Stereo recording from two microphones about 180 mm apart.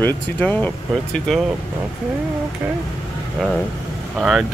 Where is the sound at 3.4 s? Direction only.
Centre (ahead or behind).